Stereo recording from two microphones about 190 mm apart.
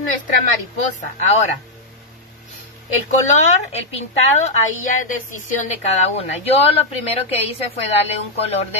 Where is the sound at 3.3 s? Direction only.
35° left (ahead or behind).